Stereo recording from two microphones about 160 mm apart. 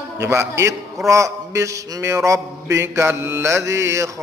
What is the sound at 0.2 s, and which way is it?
Speech, 15° right (ahead or behind).